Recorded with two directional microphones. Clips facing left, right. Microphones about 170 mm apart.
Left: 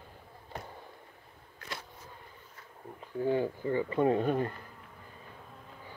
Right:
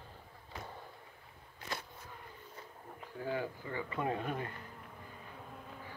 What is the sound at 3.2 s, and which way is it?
Speech, 30° left (ahead or behind).